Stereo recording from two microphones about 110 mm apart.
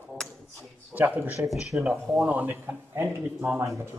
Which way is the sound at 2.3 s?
20° right (ahead or behind).